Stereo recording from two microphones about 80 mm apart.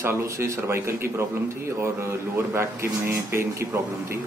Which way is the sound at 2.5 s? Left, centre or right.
Right.